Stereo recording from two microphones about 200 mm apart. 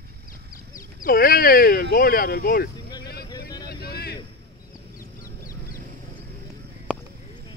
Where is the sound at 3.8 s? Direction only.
50° left (ahead or behind).